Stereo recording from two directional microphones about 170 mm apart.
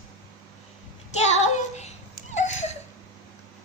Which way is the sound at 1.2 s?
40° left (ahead or behind).